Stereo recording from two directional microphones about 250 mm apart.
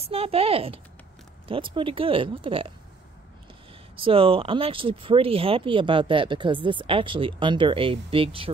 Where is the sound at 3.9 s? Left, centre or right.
Right.